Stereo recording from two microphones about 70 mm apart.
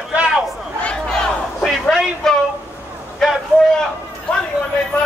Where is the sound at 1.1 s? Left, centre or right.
Centre.